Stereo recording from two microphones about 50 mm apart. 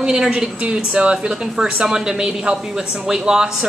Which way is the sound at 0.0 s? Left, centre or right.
Centre.